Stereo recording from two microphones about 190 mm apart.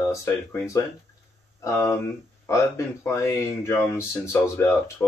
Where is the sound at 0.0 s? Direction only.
15° left (ahead or behind).